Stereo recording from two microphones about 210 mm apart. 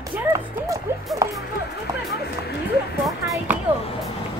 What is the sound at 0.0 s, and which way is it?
Music, 15° right (ahead or behind).